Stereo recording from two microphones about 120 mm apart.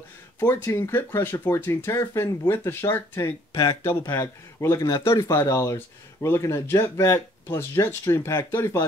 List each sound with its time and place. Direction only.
0.4 s speech: 20° left (ahead or behind)